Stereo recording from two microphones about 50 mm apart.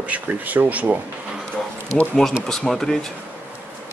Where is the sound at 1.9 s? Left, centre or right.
Left.